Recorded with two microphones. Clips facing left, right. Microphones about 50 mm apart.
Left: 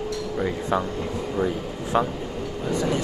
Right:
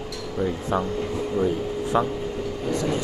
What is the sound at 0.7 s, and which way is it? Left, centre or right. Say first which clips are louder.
Speech: left 1 dB; left.